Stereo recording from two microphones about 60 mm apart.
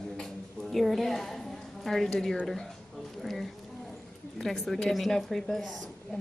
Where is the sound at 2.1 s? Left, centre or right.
Centre.